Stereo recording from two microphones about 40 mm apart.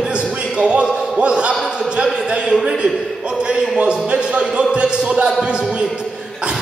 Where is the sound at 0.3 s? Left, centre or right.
Right.